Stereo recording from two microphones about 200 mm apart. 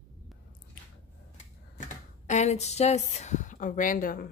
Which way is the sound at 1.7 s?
35° left (ahead or behind).